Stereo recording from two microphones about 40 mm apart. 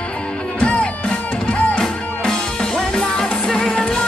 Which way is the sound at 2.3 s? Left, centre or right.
Centre.